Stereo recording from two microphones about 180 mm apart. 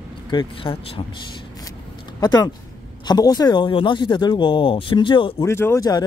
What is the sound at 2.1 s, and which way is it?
A man's voice, 20° left (ahead or behind).